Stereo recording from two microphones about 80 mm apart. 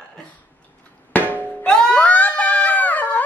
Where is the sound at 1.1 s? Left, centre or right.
Left.